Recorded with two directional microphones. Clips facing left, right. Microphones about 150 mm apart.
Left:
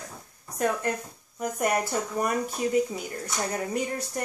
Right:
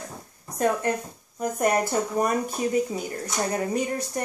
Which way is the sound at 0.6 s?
20° right (ahead or behind).